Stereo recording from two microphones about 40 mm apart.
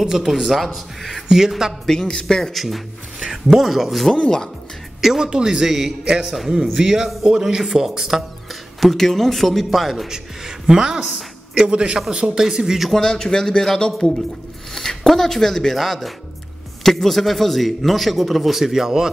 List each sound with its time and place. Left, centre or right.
0.0 s speech: centre
1.9 s speech: centre
2.5 s a man's voice: centre
6.0 s a man's voice: right
8.8 s a man's voice: centre
10.1 s a man's voice: centre
12.4 s speech: centre
13.0 s a man's voice: centre